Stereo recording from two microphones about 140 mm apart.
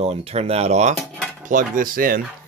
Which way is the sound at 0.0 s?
50° right (ahead or behind).